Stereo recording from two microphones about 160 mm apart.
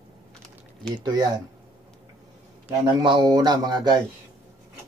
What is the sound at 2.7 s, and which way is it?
A man's voice, 25° right (ahead or behind).